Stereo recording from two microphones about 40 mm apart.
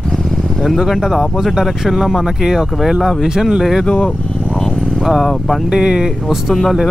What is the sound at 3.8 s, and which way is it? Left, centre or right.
Speech, left.